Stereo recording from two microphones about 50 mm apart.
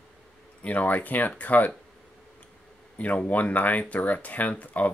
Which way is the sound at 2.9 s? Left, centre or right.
Left.